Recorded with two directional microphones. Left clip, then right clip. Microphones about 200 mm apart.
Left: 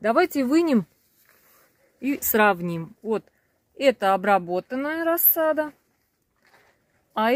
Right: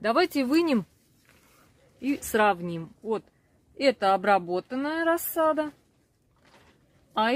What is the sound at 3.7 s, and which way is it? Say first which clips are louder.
Speech: left 3 dB; 30° left (ahead or behind).